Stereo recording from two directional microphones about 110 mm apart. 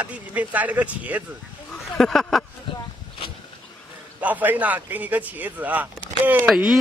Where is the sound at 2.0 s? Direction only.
Centre (ahead or behind).